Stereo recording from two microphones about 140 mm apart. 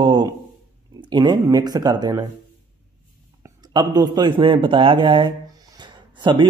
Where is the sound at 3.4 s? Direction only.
30° right (ahead or behind).